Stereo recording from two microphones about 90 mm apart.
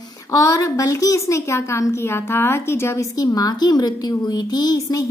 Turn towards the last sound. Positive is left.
turn(degrees=45)  # may be behind; listen again after turning